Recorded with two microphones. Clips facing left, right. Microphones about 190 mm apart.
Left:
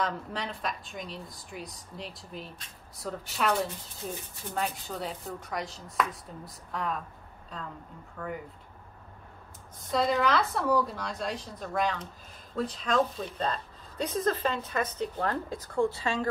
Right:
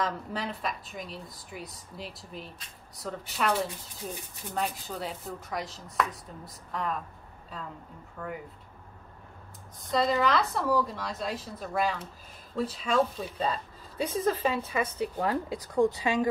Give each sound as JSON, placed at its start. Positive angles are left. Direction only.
{"t": 0.0, "sound": "a woman's voice", "side_deg": 0}
{"t": 8.2, "sound": "a woman's voice", "side_deg": -5}
{"t": 9.8, "sound": "a woman's voice", "side_deg": 0}